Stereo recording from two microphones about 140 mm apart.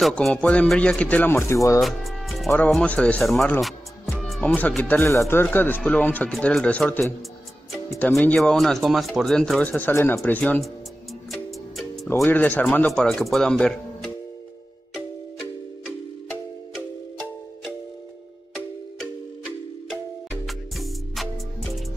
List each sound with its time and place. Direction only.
0.0 s speech: 5° left (ahead or behind); by 1.8 s 20° left (ahead or behind)
1.8 s music: centre (ahead or behind)
2.7 s speech: 10° left (ahead or behind)
3.6 s music: centre (ahead or behind); by 5.2 s 20° left (ahead or behind)
5.3 s speech: 15° left (ahead or behind)
12.3 s speech: 10° left (ahead or behind)
19.9 s music: centre (ahead or behind)